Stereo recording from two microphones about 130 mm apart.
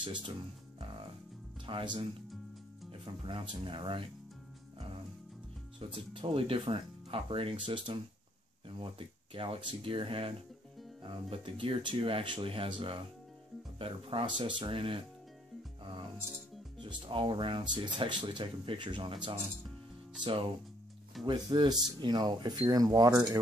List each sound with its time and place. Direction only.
1.7 s speech: 40° right (ahead or behind)
5.8 s speech: 40° right (ahead or behind)
15.8 s music: 40° right (ahead or behind)
16.7 s speech: 40° right (ahead or behind)